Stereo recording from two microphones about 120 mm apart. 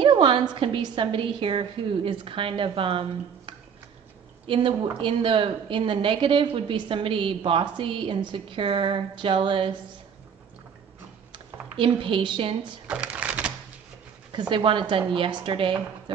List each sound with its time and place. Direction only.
0.0 s a woman's voice: 45° right (ahead or behind)
11.3 s speech: 45° right (ahead or behind)
12.8 s shuffling cards: 10° right (ahead or behind)
14.5 s a woman's voice: 45° right (ahead or behind)